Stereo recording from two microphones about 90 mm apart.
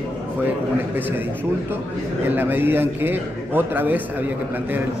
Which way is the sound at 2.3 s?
25° right (ahead or behind).